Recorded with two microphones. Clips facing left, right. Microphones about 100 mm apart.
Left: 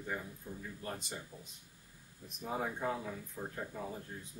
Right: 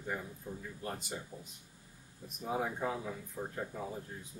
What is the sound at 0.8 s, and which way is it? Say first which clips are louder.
Speech: right 3 dB; 5° right (ahead or behind).